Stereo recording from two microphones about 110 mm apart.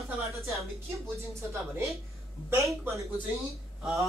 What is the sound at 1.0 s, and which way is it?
Speech, 25° right (ahead or behind).